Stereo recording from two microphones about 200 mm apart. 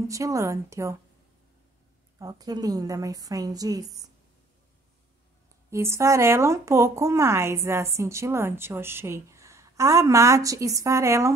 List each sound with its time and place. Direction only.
0.1 s a woman's voice: 15° right (ahead or behind)
2.1 s a woman's voice: 20° right (ahead or behind)
5.7 s a woman's voice: 15° right (ahead or behind)